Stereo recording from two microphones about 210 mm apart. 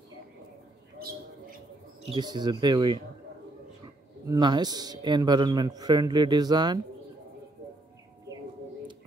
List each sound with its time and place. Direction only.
2.0 s a man's voice: 20° right (ahead or behind)
4.3 s a man's voice: 20° right (ahead or behind)